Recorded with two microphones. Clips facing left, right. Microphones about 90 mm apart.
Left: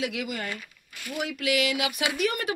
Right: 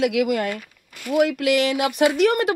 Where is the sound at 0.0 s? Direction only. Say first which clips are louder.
Right 11 dB; 75° right (ahead or behind).